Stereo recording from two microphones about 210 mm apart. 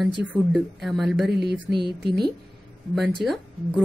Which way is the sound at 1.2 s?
50° right (ahead or behind).